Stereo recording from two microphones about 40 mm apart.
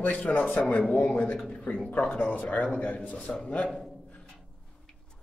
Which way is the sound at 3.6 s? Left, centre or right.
Centre.